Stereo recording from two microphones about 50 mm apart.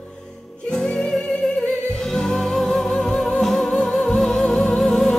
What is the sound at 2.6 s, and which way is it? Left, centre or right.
Music, centre.